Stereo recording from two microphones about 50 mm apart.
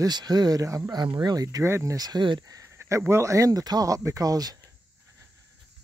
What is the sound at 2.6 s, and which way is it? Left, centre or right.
Speech, right.